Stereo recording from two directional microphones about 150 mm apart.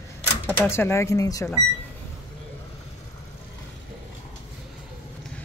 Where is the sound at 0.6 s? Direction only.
15° left (ahead or behind).